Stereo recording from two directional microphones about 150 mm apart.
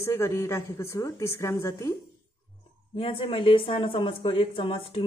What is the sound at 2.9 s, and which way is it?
Speech, 35° left (ahead or behind).